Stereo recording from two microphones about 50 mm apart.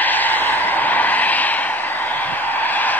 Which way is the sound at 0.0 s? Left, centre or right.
Left.